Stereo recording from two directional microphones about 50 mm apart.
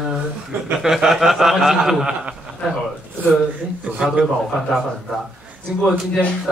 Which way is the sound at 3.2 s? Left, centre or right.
Right.